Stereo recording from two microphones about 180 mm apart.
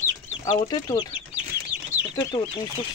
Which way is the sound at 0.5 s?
20° left (ahead or behind).